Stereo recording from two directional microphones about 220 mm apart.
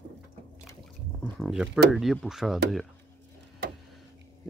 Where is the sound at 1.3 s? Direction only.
Centre (ahead or behind).